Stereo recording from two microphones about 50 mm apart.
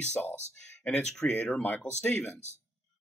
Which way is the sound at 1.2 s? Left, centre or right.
Left.